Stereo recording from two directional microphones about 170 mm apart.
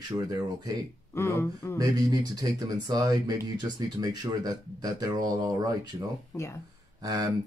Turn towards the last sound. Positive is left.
turn(degrees=-20)  # may be behind; listen again after turning